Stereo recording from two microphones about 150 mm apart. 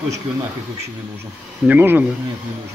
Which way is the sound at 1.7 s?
10° right (ahead or behind).